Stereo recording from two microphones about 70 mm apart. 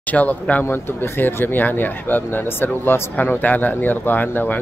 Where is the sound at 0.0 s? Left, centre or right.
Left.